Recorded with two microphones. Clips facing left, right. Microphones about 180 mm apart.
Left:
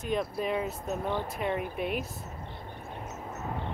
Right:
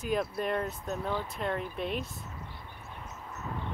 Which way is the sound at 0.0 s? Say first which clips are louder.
Even; centre (ahead or behind).